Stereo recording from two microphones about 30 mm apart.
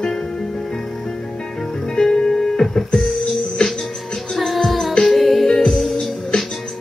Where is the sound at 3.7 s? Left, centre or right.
Centre.